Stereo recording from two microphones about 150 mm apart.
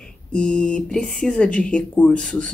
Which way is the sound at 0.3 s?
5° left (ahead or behind).